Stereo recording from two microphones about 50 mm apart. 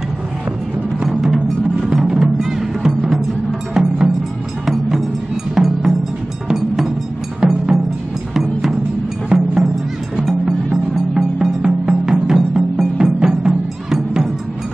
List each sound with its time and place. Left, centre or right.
2.0 s music: centre
3.7 s music: centre
4.6 s music: centre
7.3 s music: centre
9.3 s music: centre
10.2 s music: centre